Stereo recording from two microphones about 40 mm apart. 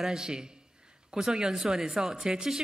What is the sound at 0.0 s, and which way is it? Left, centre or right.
A man's voice, centre.